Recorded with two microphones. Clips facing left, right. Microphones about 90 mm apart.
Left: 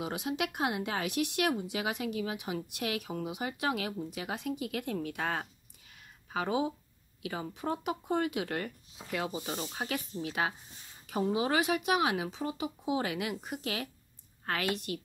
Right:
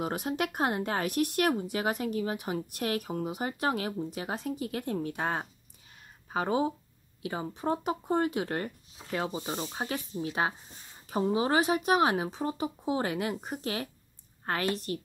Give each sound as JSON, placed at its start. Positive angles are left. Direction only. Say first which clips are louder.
{"t": 0.0, "sound": "speech", "louder": "right 3 dB", "side_deg": -45}
{"t": 6.3, "sound": "speech", "louder": "right 3 dB", "side_deg": -40}